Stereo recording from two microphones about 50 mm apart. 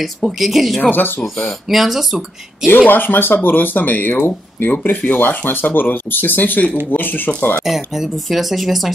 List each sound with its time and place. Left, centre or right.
0.0 s speech: centre
0.8 s speech: left
1.2 s speech: centre
2.9 s speech: left
7.6 s speech: centre